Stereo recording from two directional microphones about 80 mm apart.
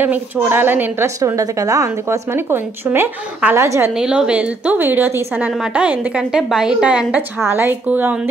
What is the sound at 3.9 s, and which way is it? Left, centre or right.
A woman's voice, centre.